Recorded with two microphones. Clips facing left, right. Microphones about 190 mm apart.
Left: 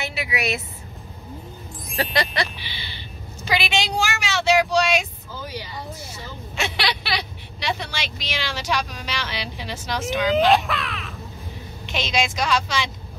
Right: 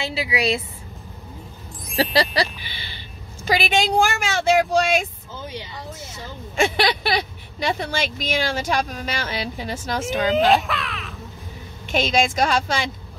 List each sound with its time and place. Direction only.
0.0 s a woman's voice: 25° right (ahead or behind)
2.6 s a sound: 45° right (ahead or behind)
3.4 s speech: 45° right (ahead or behind)
5.4 s a sound: 25° right (ahead or behind)
6.5 s speech: 50° right (ahead or behind)
10.3 s speech: centre (ahead or behind)
11.8 s speech: 50° right (ahead or behind)